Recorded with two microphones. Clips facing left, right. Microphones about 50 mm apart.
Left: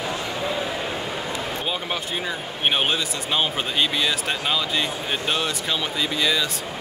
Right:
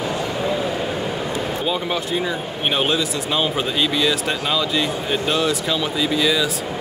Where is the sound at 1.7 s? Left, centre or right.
Centre.